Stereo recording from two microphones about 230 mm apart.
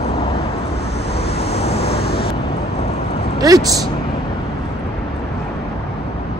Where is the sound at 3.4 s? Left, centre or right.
Centre.